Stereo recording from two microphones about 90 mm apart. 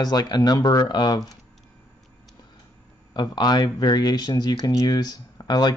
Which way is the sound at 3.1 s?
50° left (ahead or behind).